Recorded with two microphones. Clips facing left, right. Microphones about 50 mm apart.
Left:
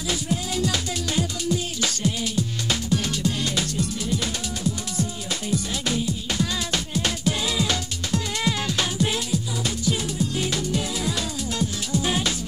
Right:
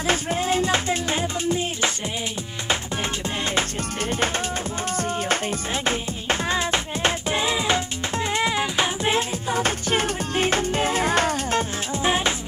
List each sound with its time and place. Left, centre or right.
0.0 s music: right
9.5 s music: right